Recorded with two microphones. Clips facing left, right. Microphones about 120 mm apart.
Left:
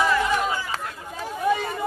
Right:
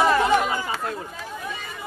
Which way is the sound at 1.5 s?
55° left (ahead or behind).